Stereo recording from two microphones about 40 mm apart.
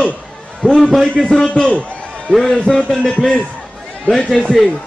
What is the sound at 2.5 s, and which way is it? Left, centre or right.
Speech, left.